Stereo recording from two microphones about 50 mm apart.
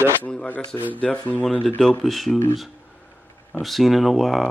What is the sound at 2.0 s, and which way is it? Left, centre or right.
Speech, centre.